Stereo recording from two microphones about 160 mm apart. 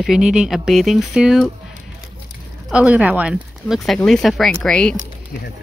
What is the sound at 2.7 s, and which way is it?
Speech, 5° right (ahead or behind).